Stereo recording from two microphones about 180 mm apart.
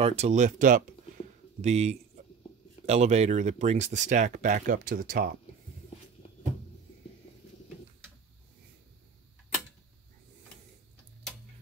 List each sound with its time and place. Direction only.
0.0 s speech: 35° right (ahead or behind); by 5.4 s 55° right (ahead or behind)